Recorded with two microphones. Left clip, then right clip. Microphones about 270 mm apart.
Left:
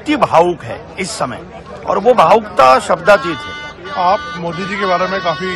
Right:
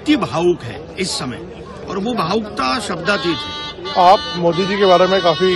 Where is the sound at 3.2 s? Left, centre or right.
Centre.